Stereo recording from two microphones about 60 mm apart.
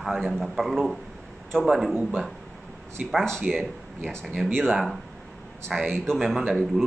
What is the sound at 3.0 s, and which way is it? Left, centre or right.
Speech, centre.